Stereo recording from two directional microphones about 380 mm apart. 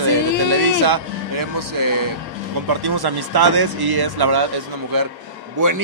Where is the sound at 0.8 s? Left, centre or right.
Right.